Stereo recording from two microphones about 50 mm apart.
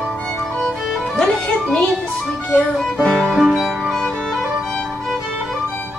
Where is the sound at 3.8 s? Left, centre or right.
Centre.